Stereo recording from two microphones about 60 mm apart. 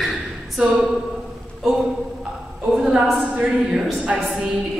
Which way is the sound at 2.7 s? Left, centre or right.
Centre.